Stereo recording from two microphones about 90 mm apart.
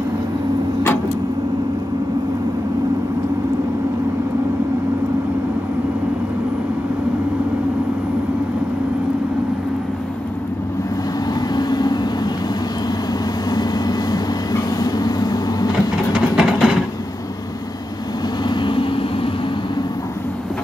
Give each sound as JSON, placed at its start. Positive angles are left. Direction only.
{"t": 11.5, "sound": "vehicle", "side_deg": 50}
{"t": 13.5, "sound": "vehicle", "side_deg": 45}
{"t": 16.1, "sound": "a sound", "side_deg": -5}
{"t": 18.5, "sound": "vehicle", "side_deg": 65}